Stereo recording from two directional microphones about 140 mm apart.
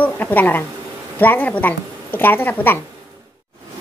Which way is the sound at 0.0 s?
10° left (ahead or behind).